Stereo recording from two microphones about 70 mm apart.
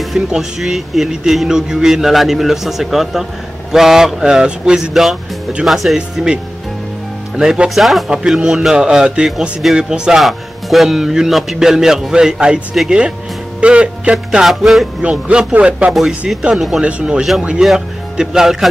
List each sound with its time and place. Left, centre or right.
0.0 s a man's voice: centre
6.1 s speech: centre
14.1 s a man's voice: centre
15.0 s speech: centre
15.9 s a man's voice: centre
16.8 s speech: centre